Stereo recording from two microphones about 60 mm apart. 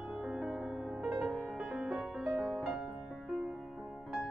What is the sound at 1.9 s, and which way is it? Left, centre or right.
Music, centre.